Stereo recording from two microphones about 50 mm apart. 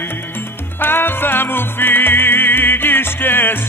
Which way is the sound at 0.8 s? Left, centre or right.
Left.